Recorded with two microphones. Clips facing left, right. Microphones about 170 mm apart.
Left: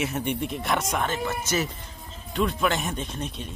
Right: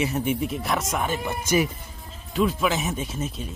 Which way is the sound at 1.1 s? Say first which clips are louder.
Right 3 dB; 10° right (ahead or behind).